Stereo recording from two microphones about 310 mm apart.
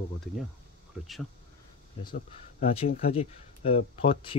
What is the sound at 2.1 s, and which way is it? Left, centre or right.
Speech, centre.